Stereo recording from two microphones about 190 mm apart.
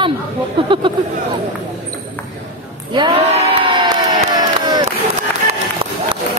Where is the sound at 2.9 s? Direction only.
25° right (ahead or behind).